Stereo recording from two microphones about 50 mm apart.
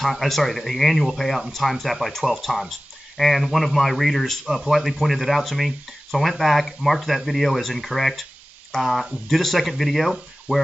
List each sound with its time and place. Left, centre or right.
0.0 s speech: centre
10.5 s speech: right